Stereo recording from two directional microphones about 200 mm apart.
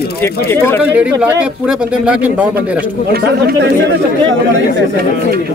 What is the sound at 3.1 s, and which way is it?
Speech, 55° right (ahead or behind).